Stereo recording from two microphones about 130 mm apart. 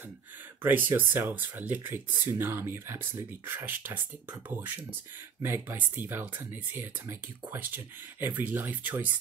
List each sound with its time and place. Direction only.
0.6 s speech: 15° right (ahead or behind)